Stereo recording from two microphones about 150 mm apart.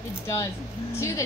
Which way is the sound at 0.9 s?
20° left (ahead or behind).